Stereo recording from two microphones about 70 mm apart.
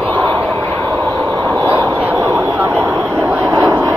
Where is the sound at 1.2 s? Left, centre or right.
Right.